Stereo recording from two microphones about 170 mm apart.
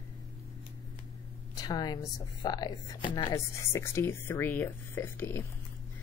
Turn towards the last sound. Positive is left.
turn(degrees=15)  # may be behind; listen again after turning